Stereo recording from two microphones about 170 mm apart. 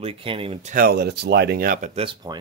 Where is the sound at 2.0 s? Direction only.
30° right (ahead or behind).